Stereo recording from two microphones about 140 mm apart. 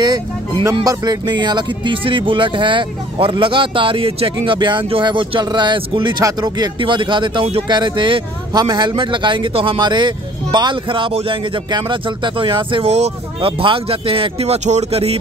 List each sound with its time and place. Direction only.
0.0 s music: 30° right (ahead or behind)
0.8 s speech: 30° right (ahead or behind); by 15.1 s 50° right (ahead or behind)